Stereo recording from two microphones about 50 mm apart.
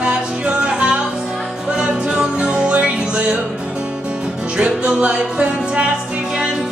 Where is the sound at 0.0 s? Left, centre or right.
Right.